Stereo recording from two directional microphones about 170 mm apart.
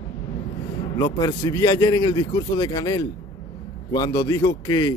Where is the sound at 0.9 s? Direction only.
20° left (ahead or behind).